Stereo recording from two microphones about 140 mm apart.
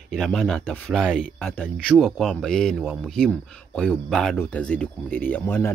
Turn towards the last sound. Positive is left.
turn(degrees=10)  # may be behind; listen again after turning